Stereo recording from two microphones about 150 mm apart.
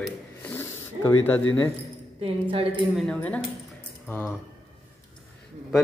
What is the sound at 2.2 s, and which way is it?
Speech, 35° right (ahead or behind).